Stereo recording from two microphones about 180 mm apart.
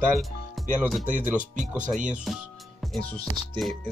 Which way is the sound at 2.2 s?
Centre (ahead or behind).